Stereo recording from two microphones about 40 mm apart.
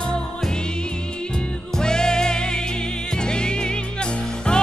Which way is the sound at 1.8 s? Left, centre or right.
Centre.